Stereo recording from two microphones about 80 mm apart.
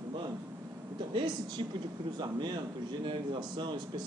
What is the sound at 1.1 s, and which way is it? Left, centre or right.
A man's voice, right.